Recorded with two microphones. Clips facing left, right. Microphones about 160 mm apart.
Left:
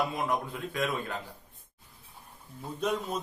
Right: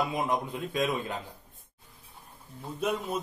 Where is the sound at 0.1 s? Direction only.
20° right (ahead or behind).